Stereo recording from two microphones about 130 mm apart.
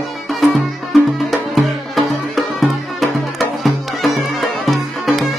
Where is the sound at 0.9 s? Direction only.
Centre (ahead or behind).